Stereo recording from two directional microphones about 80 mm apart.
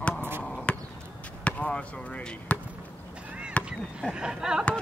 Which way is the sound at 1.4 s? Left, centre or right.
Centre.